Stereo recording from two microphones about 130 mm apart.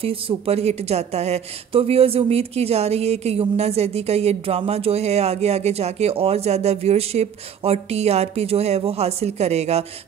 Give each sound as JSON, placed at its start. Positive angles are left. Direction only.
{"t": 0.0, "sound": "a woman's voice", "side_deg": -45}